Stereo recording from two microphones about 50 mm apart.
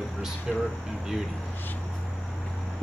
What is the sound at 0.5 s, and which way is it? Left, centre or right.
Speech, centre.